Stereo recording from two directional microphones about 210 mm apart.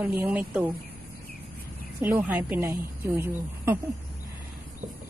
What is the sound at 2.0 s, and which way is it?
A woman's voice, 10° right (ahead or behind).